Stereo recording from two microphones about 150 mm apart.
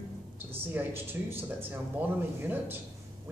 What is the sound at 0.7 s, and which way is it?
Speech, 15° right (ahead or behind).